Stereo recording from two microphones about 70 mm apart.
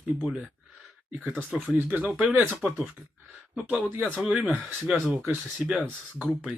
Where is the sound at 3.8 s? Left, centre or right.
Centre.